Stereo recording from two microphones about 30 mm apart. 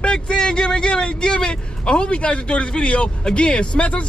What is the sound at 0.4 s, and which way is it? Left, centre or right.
Speech, left.